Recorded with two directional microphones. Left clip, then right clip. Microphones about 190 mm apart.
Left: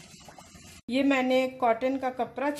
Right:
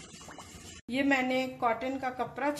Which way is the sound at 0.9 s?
35° left (ahead or behind).